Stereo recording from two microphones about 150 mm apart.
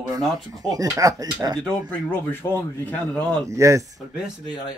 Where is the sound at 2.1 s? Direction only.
15° left (ahead or behind).